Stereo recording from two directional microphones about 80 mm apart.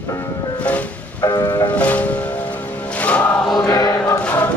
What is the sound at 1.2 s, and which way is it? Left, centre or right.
Music, left.